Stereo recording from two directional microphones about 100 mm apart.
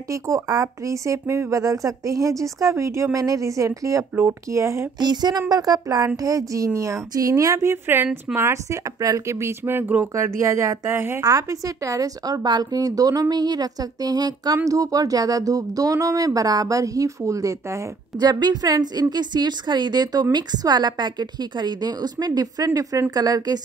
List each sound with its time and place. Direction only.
0.1 s a woman's voice: 35° right (ahead or behind)
4.9 s a woman's voice: 45° right (ahead or behind); by 11.2 s 25° right (ahead or behind)
11.2 s a woman's voice: 35° right (ahead or behind)
18.2 s a woman's voice: 45° right (ahead or behind)